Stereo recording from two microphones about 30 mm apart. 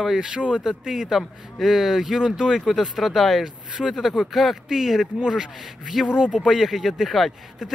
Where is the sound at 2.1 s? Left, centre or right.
Right.